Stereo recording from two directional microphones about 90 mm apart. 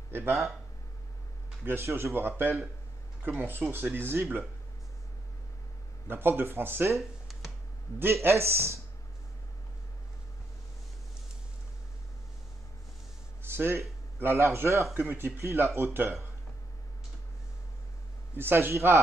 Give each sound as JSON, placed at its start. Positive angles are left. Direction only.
{"t": 0.1, "sound": "speech", "side_deg": -25}
{"t": 1.6, "sound": "speech", "side_deg": -25}
{"t": 6.0, "sound": "speech", "side_deg": -25}
{"t": 7.0, "sound": "a sound", "side_deg": 0}
{"t": 8.0, "sound": "speech", "side_deg": -25}
{"t": 13.4, "sound": "speech", "side_deg": -25}
{"t": 18.3, "sound": "speech", "side_deg": -25}